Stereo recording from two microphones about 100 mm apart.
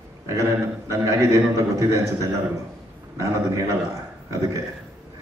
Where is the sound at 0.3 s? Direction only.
30° right (ahead or behind).